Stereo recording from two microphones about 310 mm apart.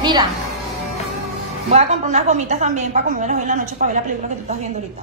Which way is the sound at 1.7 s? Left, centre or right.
Right.